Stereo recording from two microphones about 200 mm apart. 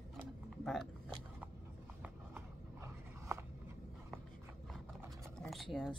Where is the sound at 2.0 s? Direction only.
10° right (ahead or behind).